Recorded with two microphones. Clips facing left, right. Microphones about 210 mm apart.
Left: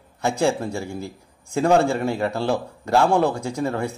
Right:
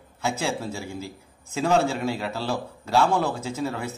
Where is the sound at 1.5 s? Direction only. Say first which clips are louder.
Left 4 dB; 55° left (ahead or behind).